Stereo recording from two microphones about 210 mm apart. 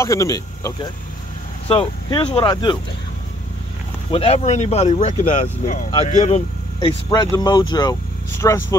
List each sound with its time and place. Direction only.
0.0 s speech: 15° left (ahead or behind)
4.1 s speech: 25° left (ahead or behind)